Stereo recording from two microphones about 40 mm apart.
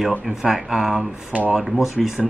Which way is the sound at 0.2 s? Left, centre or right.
Centre.